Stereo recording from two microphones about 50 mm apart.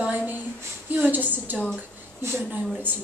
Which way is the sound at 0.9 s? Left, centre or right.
Right.